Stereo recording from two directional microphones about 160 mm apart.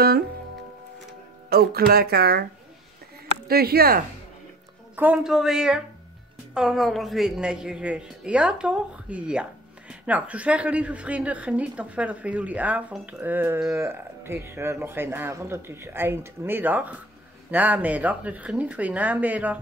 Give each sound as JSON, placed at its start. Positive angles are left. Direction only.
{"t": 1.5, "sound": "speech", "side_deg": -70}
{"t": 3.4, "sound": "speech", "side_deg": -75}
{"t": 4.9, "sound": "a woman's voice", "side_deg": -10}